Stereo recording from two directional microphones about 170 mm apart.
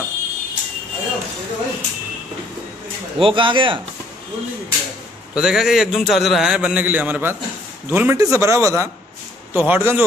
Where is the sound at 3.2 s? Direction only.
30° right (ahead or behind).